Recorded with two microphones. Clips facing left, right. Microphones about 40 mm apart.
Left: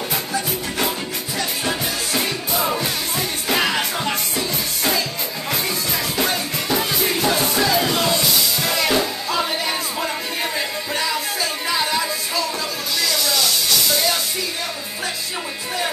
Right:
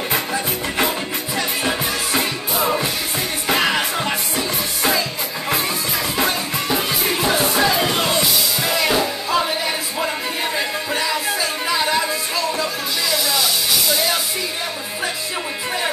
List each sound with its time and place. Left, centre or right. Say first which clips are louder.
0.1 s music: right 2 dB; right; by 5.0 s centre
6.1 s music: right 2 dB; centre
8.6 s music: right 2 dB; centre
11.7 s music: right 2 dB; centre
13.1 s music: right 1 dB; centre